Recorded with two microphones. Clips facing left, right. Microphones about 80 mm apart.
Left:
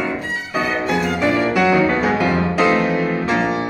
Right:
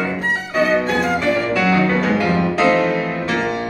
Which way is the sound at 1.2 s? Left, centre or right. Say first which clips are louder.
Left 1 dB; centre.